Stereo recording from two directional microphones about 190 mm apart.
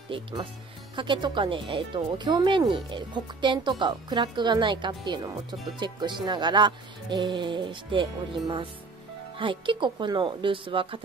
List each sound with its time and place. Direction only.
0.1 s speech: 25° right (ahead or behind)